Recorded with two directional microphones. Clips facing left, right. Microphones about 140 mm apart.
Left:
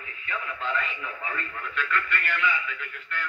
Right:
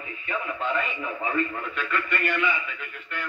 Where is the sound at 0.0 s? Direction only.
15° right (ahead or behind).